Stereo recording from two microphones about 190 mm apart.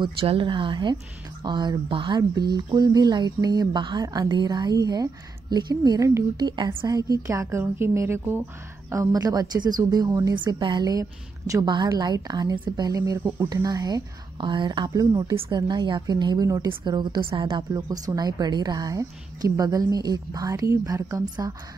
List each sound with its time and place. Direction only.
0.0 s a woman's voice: 30° right (ahead or behind)